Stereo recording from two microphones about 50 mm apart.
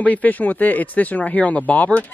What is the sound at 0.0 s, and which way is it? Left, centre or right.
Speech, left.